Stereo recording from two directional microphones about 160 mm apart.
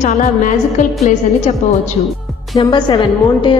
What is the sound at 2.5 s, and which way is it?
A woman's voice, 25° left (ahead or behind).